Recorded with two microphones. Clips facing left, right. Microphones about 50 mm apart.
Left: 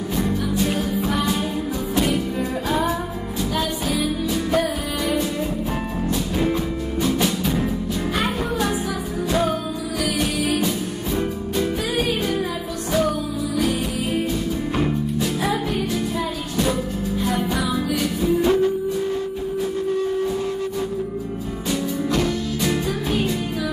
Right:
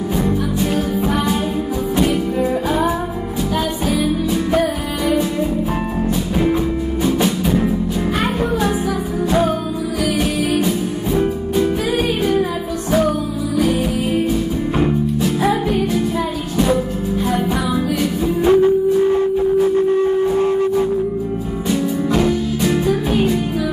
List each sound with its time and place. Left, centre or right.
0.2 s music: centre
3.9 s music: centre
7.2 s music: centre
11.1 s music: centre
13.6 s music: centre
17.2 s music: centre; by 20.8 s right
21.6 s music: centre